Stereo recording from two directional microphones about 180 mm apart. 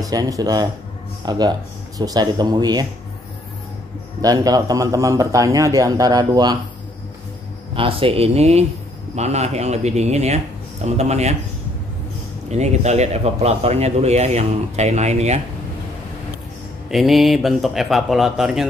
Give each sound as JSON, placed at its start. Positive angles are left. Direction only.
{"t": 0.0, "sound": "a man's voice", "side_deg": -20}
{"t": 4.2, "sound": "a man's voice", "side_deg": -20}
{"t": 7.7, "sound": "speech", "side_deg": -30}
{"t": 12.4, "sound": "speech", "side_deg": -40}
{"t": 16.9, "sound": "speech", "side_deg": 0}